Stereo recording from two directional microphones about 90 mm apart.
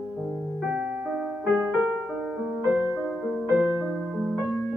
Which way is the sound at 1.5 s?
25° right (ahead or behind).